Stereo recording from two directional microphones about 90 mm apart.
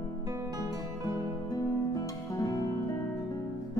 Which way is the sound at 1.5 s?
45° left (ahead or behind).